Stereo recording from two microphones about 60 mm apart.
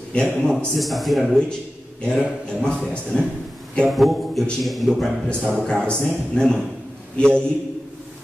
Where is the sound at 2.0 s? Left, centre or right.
Centre.